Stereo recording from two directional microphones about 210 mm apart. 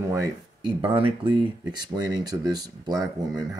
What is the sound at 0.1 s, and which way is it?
Speech, 20° right (ahead or behind).